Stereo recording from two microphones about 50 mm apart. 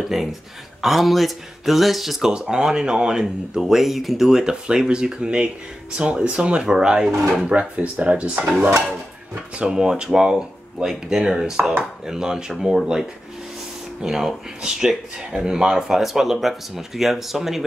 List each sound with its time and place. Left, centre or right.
0.1 s speech: centre
2.3 s speech: centre
9.6 s speech: centre
14.0 s speech: centre